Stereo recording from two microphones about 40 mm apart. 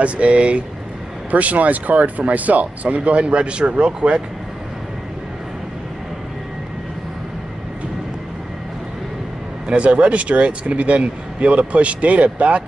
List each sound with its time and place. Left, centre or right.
0.0 s speech: right
9.7 s speech: right